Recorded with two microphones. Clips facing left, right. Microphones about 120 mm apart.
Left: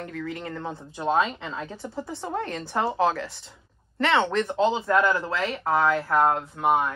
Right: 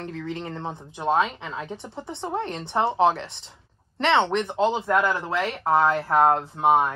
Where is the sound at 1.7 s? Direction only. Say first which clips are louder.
Left 1 dB; 25° right (ahead or behind).